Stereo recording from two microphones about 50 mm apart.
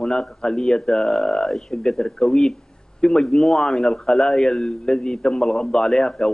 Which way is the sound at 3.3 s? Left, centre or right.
Centre.